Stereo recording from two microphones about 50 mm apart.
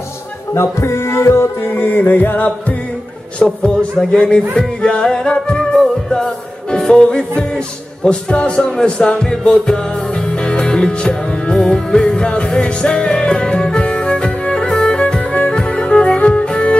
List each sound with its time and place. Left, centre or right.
0.6 s music: left
3.4 s a man's voice: centre
4.6 s music: centre